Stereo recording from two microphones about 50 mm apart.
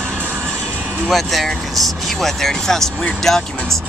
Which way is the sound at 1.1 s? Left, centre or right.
Centre.